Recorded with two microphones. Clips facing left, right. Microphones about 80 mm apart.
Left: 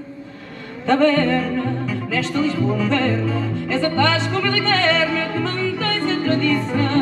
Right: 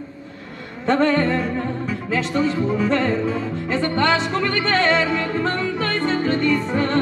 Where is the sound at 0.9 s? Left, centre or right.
Right.